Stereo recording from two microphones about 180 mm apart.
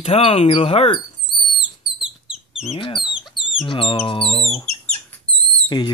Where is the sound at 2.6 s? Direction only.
30° left (ahead or behind).